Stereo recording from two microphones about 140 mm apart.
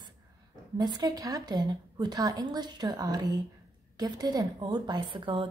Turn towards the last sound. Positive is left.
turn(degrees=-40)  # may be behind; listen again after turning